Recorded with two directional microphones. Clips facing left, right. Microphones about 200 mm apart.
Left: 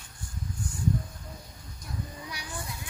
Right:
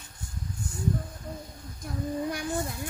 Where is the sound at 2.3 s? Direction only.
50° right (ahead or behind).